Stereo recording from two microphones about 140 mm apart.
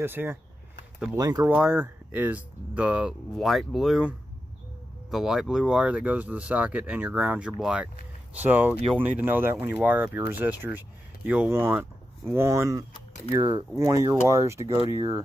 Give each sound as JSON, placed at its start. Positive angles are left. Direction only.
{"t": 0.0, "sound": "speech", "side_deg": -15}
{"t": 1.5, "sound": "speech", "side_deg": -10}
{"t": 5.1, "sound": "speech", "side_deg": -5}